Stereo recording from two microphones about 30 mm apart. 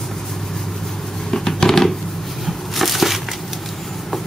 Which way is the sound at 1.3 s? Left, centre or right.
Centre.